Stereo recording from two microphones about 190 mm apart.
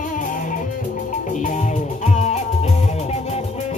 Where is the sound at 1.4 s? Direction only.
40° left (ahead or behind).